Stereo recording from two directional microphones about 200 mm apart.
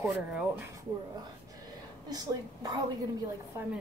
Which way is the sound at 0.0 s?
5° right (ahead or behind).